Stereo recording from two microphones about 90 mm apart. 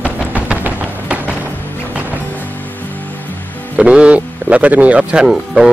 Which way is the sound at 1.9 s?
20° right (ahead or behind).